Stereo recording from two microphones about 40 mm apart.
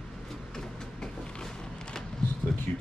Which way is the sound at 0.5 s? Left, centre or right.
Centre.